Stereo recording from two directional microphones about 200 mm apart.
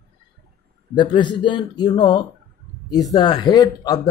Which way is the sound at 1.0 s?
20° left (ahead or behind).